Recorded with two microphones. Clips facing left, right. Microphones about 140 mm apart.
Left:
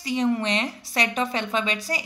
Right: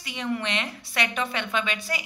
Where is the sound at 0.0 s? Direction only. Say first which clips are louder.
Left 6 dB; 35° left (ahead or behind).